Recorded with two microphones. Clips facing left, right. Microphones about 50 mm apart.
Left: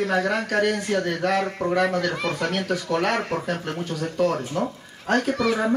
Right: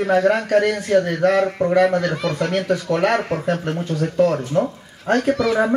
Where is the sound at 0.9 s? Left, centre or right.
Right.